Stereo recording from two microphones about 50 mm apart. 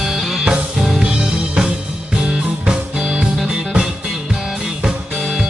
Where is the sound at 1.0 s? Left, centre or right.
Centre.